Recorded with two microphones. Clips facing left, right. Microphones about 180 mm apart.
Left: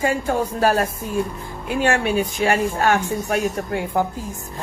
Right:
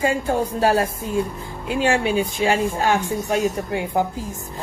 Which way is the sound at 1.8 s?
15° right (ahead or behind).